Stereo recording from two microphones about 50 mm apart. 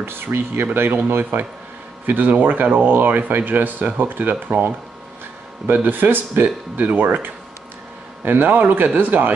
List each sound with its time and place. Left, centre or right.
0.0 s speech: right